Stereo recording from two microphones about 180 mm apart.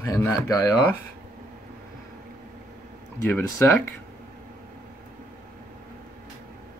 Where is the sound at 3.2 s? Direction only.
10° left (ahead or behind).